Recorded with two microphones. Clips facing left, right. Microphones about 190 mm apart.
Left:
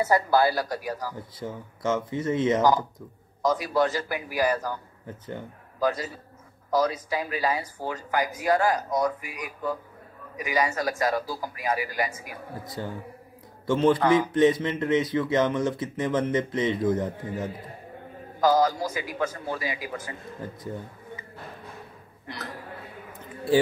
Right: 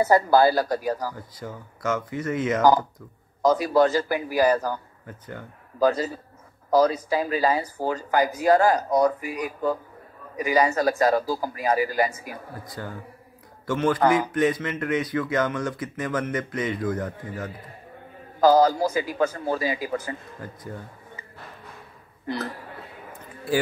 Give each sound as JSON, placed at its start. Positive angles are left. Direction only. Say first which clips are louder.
{"t": 0.0, "sound": "speech", "louder": "right 4 dB", "side_deg": -40}
{"t": 1.1, "sound": "speech", "louder": "left 2 dB", "side_deg": 25}
{"t": 3.4, "sound": "speech", "louder": "right 5 dB", "side_deg": -35}
{"t": 5.0, "sound": "speech", "louder": "left 2 dB", "side_deg": 20}
{"t": 5.8, "sound": "speech", "louder": "right 5 dB", "side_deg": -35}
{"t": 12.6, "sound": "a man's voice", "louder": "left 4 dB", "side_deg": 25}
{"t": 18.4, "sound": "speech", "louder": "right 4 dB", "side_deg": -35}
{"t": 20.3, "sound": "speech", "louder": "left 2 dB", "side_deg": 20}